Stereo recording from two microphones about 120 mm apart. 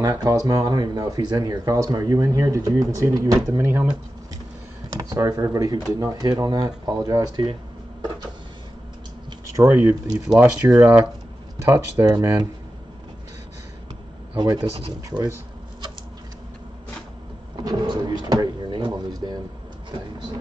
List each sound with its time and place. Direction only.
0.0 s speech: 30° right (ahead or behind)
5.1 s speech: 25° right (ahead or behind)
9.6 s speech: 15° right (ahead or behind)
11.6 s speech: 20° right (ahead or behind)
14.3 s speech: 40° right (ahead or behind)
17.6 s drawer open or close: 35° right (ahead or behind)